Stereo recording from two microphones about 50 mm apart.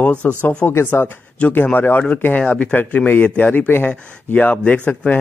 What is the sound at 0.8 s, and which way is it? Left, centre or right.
Speech, left.